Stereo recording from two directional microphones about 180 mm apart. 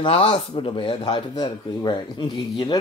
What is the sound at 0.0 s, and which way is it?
Speech, 30° left (ahead or behind).